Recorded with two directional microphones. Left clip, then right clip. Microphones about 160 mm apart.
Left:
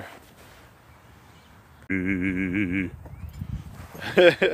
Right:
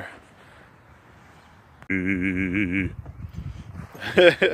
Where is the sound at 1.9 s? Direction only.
5° right (ahead or behind).